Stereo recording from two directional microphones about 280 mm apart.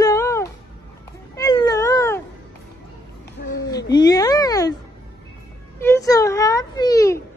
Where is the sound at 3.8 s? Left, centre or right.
Centre.